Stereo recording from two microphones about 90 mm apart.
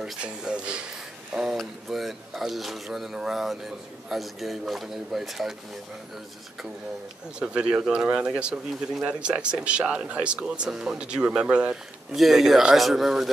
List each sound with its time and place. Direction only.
0.0 s a sound: 10° right (ahead or behind)
1.6 s speech: centre (ahead or behind)
7.3 s speech: 10° right (ahead or behind)